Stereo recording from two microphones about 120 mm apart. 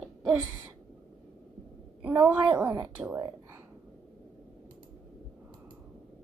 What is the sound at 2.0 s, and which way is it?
Speech, 15° right (ahead or behind).